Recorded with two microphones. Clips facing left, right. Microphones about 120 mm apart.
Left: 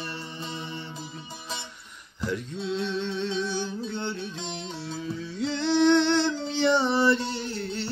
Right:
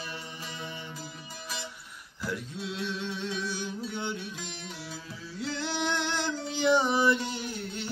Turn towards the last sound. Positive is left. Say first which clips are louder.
# left 4 dB
turn(degrees=-10)  # may be behind; listen again after turning